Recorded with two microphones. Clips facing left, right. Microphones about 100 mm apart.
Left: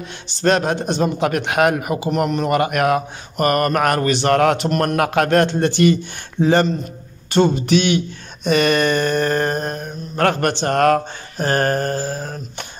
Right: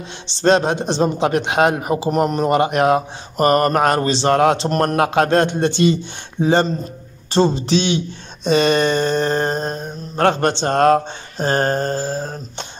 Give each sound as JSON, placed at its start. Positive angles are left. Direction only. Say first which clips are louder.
{"t": 0.3, "sound": "speech", "louder": "right 2 dB", "side_deg": -25}
{"t": 4.6, "sound": "speech", "louder": "right 1 dB", "side_deg": -35}